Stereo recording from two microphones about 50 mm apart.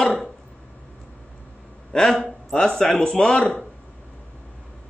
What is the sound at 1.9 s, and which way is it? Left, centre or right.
A man's voice, centre.